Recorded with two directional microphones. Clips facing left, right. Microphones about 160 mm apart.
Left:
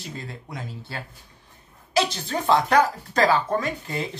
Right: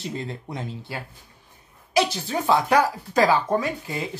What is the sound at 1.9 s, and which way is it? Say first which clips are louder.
Speech: right 1 dB; 10° right (ahead or behind).